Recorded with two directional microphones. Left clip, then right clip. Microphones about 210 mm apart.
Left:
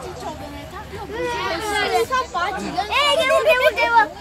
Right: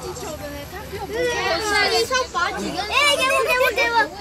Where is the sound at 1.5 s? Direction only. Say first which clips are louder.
Even; 35° left (ahead or behind).